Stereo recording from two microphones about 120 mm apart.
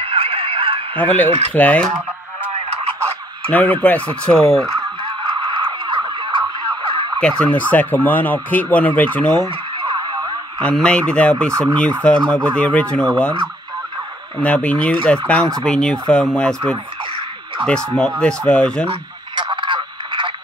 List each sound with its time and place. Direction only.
0.0 s a sound: 50° right (ahead or behind)
0.9 s speech: 15° left (ahead or behind)
3.4 s speech: 15° left (ahead or behind)
5.0 s a sound: 45° right (ahead or behind)
7.2 s speech: 10° left (ahead or behind)
9.8 s a sound: 40° right (ahead or behind)
10.6 s speech: 5° left (ahead or behind)
14.4 s speech: 10° left (ahead or behind)
18.2 s speech: 10° left (ahead or behind)
18.9 s radio: 45° right (ahead or behind)